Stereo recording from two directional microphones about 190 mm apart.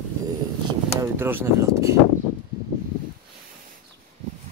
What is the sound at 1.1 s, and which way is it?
Speech, 10° right (ahead or behind).